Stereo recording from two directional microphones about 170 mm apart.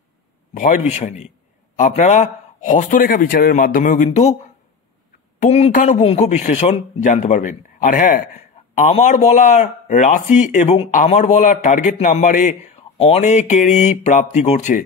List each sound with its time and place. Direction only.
0.8 s speech: 40° left (ahead or behind)
12.9 s speech: 35° left (ahead or behind)